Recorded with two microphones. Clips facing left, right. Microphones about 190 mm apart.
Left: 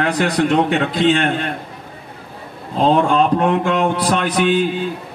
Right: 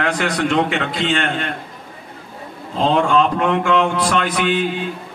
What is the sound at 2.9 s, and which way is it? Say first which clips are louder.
Speech: left 1 dB; 40° left (ahead or behind).